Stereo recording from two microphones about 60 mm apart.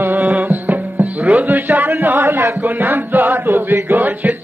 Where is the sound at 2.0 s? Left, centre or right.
Right.